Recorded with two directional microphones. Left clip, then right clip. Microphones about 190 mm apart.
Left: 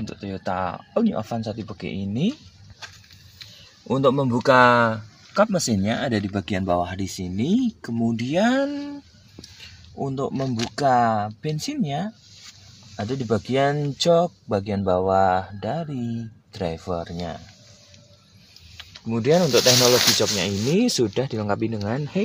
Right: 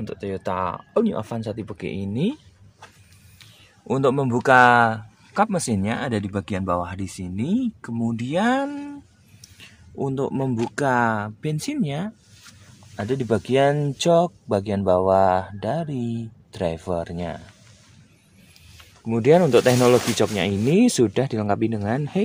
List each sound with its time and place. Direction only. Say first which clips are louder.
0.0 s speech: right 3 dB; 20° right (ahead or behind)
3.8 s speech: left 1 dB; 10° right (ahead or behind)
5.3 s speech: left 1 dB; 5° right (ahead or behind)
8.0 s speech: left 1 dB; 15° right (ahead or behind)
10.0 s speech: right 2 dB; 20° right (ahead or behind)
19.0 s speech: right 3 dB; 20° right (ahead or behind)